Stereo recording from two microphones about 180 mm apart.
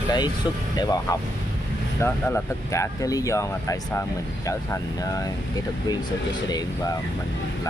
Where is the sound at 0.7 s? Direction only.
20° left (ahead or behind).